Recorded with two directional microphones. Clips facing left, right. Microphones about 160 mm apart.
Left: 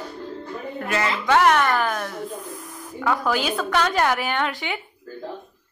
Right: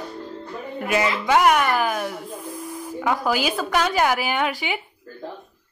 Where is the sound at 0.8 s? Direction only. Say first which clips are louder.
Right 3 dB; 10° right (ahead or behind).